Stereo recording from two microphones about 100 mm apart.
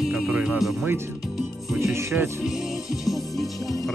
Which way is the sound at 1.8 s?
25° right (ahead or behind).